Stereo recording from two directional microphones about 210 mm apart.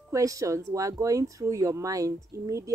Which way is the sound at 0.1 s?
15° right (ahead or behind).